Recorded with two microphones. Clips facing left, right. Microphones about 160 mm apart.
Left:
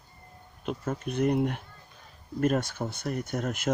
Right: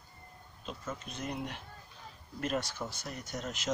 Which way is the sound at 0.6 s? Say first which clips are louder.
Left 10 dB; 60° left (ahead or behind).